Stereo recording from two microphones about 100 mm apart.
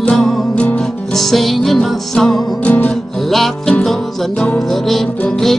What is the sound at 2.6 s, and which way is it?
Music, 15° left (ahead or behind).